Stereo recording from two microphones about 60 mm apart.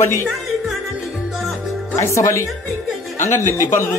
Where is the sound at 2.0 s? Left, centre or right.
Left.